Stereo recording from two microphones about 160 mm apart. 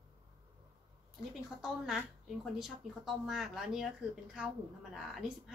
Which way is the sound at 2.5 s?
Centre (ahead or behind).